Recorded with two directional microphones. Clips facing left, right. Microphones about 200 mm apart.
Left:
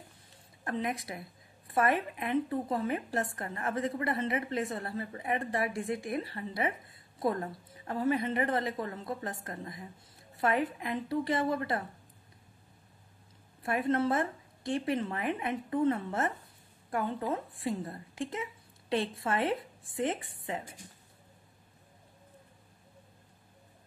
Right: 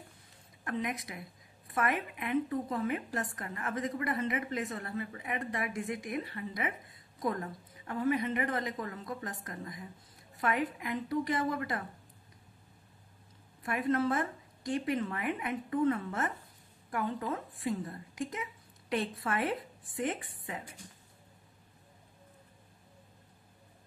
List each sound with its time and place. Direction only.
0.7 s a woman's voice: 30° left (ahead or behind)
13.6 s a woman's voice: 30° left (ahead or behind)